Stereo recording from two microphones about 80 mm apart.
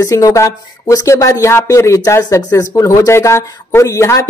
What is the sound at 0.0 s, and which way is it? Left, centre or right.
Speech, left.